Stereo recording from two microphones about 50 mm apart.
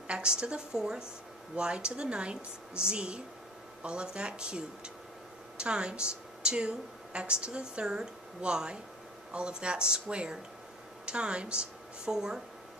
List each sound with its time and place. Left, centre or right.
0.1 s a woman's voice: centre